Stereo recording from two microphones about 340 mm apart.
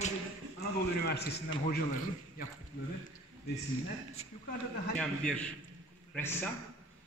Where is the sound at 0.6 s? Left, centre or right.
Left.